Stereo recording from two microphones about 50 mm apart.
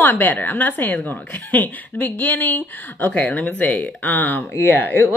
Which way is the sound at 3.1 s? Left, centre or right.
Left.